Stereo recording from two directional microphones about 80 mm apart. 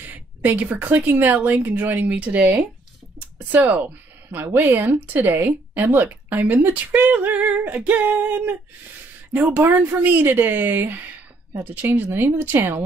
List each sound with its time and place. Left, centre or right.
0.0 s speech: right
3.2 s a sound: centre
4.4 s speech: right